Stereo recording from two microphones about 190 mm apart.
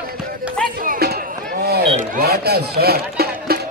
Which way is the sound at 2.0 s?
55° right (ahead or behind).